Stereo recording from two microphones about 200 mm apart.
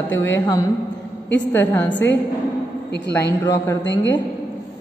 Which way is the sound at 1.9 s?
60° left (ahead or behind).